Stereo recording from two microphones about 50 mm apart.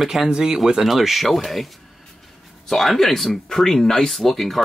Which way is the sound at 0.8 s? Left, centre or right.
Centre.